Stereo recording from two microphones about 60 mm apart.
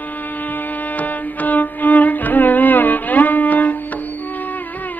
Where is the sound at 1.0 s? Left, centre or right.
Left.